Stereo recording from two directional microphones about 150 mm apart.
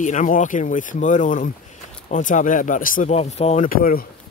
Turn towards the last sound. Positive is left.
turn(degrees=70)  # may be behind; listen again after turning